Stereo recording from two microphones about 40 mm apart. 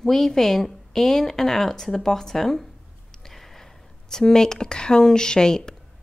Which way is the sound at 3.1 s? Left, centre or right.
Centre.